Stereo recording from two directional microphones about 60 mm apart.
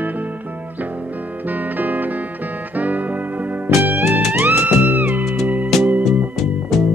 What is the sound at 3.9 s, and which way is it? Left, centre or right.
Music, right.